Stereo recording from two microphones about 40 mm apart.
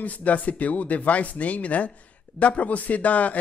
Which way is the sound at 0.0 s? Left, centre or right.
Left.